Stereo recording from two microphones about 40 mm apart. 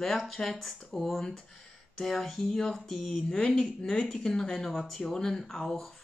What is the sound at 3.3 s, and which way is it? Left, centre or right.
Speech, left.